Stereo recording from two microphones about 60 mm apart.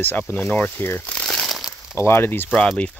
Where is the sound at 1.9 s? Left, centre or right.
Left.